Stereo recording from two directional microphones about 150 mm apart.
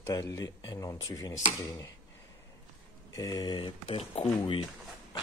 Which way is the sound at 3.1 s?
25° left (ahead or behind).